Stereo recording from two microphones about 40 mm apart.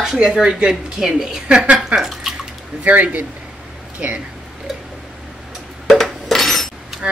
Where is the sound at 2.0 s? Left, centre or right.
Centre.